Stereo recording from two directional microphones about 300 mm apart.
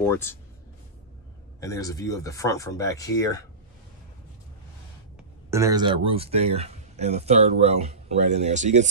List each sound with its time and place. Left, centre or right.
0.0 s speech: centre
1.6 s speech: centre
5.5 s speech: centre